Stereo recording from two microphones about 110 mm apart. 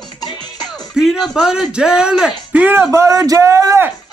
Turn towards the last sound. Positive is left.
turn(degrees=-25)  # may be behind; listen again after turning